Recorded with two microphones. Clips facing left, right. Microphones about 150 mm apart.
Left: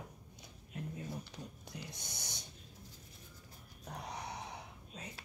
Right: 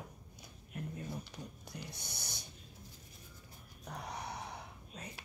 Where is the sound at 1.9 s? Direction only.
20° left (ahead or behind).